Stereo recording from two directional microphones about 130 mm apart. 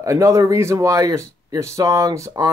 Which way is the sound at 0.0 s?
25° right (ahead or behind).